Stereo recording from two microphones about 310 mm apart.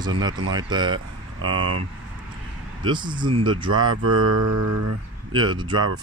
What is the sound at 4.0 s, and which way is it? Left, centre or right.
Mantra, right.